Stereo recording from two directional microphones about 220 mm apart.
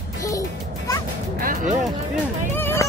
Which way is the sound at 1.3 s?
40° right (ahead or behind).